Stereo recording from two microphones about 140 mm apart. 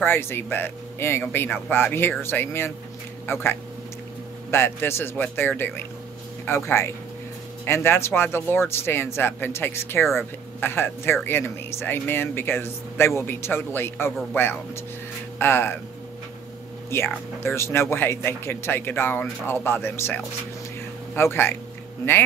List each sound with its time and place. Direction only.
0.0 s speech: 15° left (ahead or behind)
4.5 s speech: 15° left (ahead or behind)
16.9 s speech: 15° left (ahead or behind)